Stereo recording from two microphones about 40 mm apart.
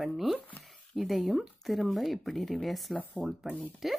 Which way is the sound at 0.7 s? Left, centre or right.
Centre.